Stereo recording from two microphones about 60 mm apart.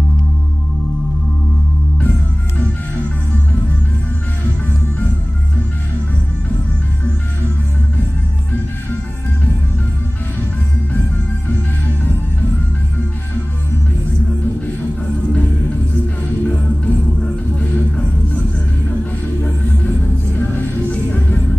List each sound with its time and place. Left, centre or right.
16.4 s music: centre
20.9 s music: left